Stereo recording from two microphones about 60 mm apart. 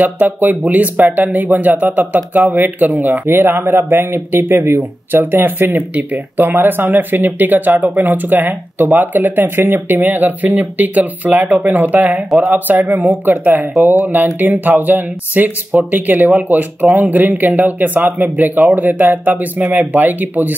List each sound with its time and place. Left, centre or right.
0.0 s speech: right
4.6 s speech: right
5.1 s speech: right